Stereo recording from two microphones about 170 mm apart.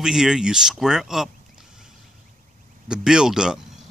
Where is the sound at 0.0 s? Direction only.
5° right (ahead or behind).